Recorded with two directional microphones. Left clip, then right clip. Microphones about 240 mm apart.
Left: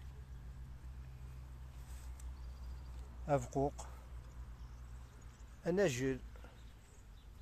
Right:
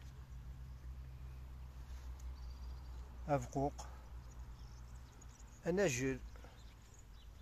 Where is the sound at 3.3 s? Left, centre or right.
Centre.